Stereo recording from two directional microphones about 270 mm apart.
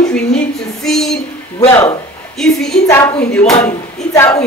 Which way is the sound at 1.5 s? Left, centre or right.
Centre.